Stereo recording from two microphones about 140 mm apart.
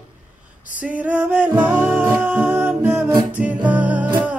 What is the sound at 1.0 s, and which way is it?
Music, 10° right (ahead or behind).